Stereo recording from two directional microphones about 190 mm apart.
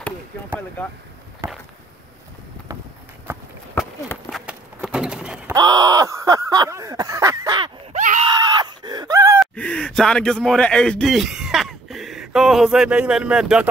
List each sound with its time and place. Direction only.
0.8 s speech: 10° left (ahead or behind)
4.3 s a sound: centre (ahead or behind)
5.5 s a sound: 20° right (ahead or behind)
7.9 s screaming: 40° right (ahead or behind)
8.3 s screaming: 20° right (ahead or behind)
9.4 s speech: 5° left (ahead or behind)